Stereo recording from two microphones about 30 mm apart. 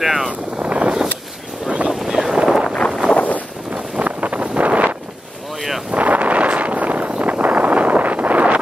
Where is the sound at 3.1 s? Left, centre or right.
Left.